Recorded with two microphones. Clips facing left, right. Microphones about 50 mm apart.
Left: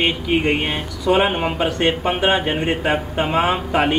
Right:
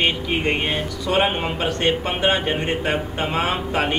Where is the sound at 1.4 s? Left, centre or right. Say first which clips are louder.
Left 3 dB; centre.